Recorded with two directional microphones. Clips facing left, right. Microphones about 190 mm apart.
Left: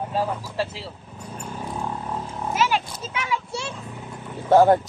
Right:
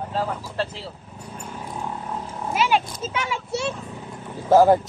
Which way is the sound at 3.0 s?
30° right (ahead or behind).